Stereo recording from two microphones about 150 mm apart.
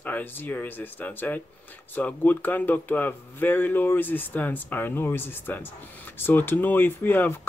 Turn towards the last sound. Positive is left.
turn(degrees=15)  # may be behind; listen again after turning